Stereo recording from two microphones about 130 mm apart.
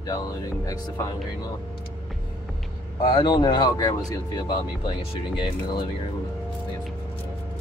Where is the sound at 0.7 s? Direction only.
25° left (ahead or behind).